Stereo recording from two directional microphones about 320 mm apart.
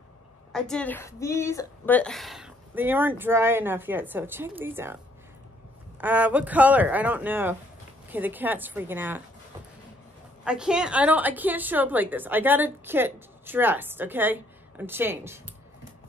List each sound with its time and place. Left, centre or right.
0.5 s a woman's voice: centre
5.9 s a woman's voice: centre
10.4 s a woman's voice: centre